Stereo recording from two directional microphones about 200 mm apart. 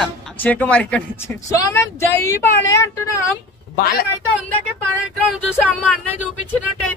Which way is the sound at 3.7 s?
50° left (ahead or behind).